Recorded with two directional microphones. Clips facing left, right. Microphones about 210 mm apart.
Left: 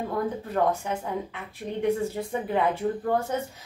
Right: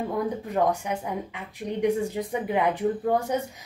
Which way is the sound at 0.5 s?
15° right (ahead or behind).